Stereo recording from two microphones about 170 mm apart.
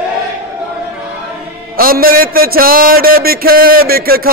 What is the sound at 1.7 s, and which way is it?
A man's voice, 60° right (ahead or behind).